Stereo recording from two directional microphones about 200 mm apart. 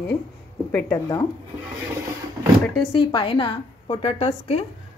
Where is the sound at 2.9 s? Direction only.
25° left (ahead or behind).